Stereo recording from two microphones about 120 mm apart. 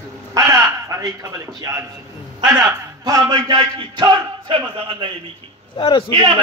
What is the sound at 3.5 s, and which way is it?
A man's voice, 45° right (ahead or behind).